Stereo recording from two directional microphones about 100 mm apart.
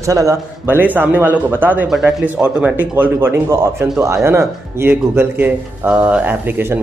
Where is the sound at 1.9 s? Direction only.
5° right (ahead or behind).